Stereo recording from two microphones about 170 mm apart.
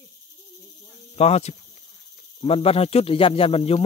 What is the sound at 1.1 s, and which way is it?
Speech, 40° left (ahead or behind).